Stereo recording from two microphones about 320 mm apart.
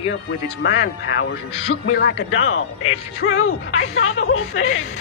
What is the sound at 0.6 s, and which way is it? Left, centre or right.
Speech, left.